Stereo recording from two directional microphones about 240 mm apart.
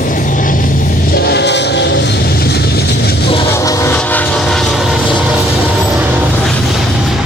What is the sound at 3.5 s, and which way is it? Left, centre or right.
Train, centre.